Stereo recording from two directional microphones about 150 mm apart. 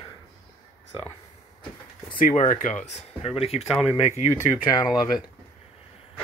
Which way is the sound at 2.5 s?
60° left (ahead or behind).